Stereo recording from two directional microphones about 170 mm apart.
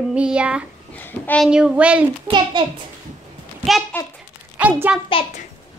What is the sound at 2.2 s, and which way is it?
Speech, 25° right (ahead or behind).